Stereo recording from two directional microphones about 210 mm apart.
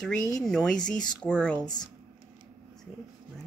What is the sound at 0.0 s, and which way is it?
A woman's voice, centre (ahead or behind).